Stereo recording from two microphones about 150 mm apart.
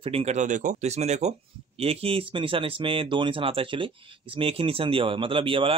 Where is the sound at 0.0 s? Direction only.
40° right (ahead or behind).